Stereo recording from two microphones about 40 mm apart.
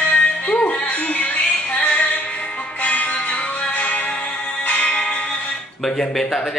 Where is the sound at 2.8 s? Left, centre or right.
Left.